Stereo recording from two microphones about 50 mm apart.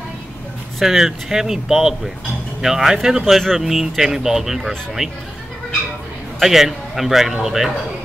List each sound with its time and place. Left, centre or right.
0.7 s speech: centre
6.4 s speech: centre